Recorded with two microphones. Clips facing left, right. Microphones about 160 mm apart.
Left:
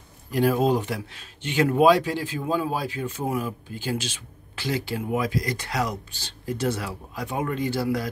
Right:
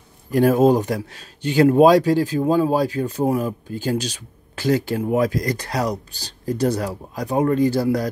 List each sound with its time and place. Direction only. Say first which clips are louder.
0.3 s speech: right 6 dB; 45° right (ahead or behind)